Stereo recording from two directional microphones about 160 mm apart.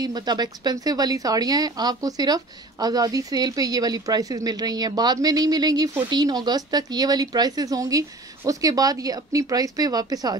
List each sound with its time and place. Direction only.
0.0 s a woman's voice: 25° right (ahead or behind)